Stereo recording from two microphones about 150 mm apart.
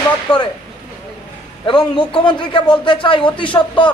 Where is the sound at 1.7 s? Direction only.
30° left (ahead or behind).